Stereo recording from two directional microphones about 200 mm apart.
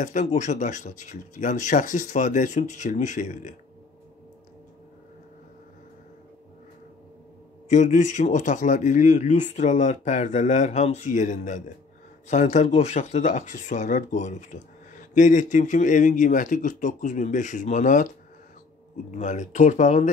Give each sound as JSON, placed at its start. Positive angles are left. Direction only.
{"t": 0.0, "sound": "speech", "side_deg": 40}
{"t": 7.7, "sound": "speech", "side_deg": 35}